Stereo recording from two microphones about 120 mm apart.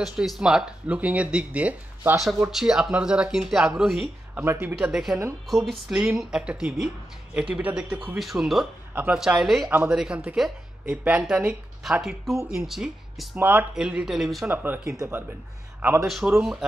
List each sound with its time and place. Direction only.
0.0 s speech: 5° right (ahead or behind)
4.4 s speech: 15° right (ahead or behind)
4.7 s speech: 5° right (ahead or behind)
8.9 s speech: 10° right (ahead or behind)
9.7 s speech: 15° right (ahead or behind)
13.4 s speech: 15° right (ahead or behind)
14.5 s speech: 15° right (ahead or behind)
16.1 s speech: centre (ahead or behind)